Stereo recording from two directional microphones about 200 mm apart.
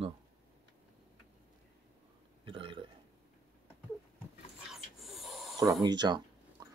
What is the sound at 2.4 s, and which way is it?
Burping, 25° right (ahead or behind).